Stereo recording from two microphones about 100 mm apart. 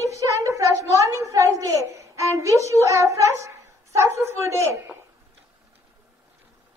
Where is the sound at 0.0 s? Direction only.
30° right (ahead or behind).